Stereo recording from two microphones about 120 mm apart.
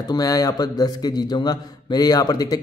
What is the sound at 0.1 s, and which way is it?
A man's voice, 30° left (ahead or behind).